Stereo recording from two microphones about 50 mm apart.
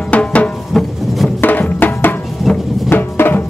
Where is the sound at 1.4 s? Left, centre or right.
Left.